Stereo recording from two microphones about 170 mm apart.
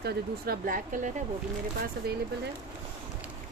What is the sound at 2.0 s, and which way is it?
Speech, 65° right (ahead or behind).